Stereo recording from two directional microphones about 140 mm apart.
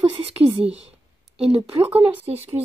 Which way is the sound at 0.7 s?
45° right (ahead or behind).